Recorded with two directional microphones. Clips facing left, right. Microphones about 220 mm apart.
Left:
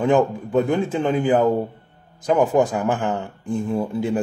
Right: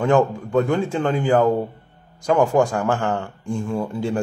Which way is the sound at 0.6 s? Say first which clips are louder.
Even; 5° left (ahead or behind).